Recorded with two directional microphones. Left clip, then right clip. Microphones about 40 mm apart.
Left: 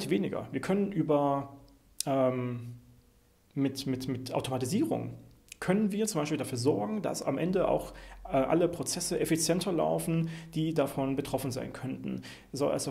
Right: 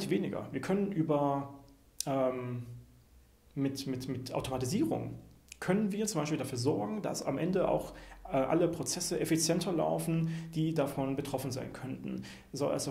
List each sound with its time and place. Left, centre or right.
0.0 s speech: left